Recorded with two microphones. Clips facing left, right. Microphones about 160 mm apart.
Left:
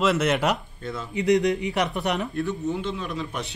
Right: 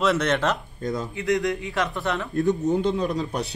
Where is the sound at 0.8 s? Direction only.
40° right (ahead or behind).